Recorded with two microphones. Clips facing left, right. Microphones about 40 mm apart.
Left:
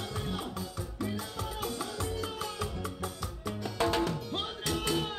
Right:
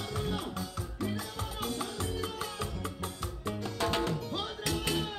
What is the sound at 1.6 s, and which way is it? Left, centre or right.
Music, right.